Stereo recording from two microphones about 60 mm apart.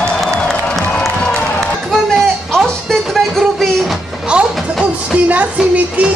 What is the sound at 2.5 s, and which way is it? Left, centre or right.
Music, centre.